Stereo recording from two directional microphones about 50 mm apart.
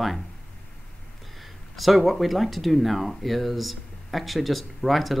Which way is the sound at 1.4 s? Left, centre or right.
Centre.